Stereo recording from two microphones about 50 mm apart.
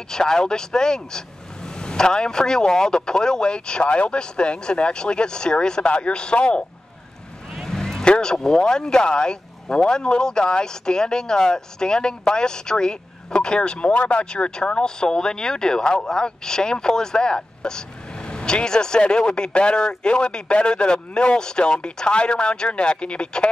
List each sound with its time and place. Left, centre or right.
0.1 s speech: centre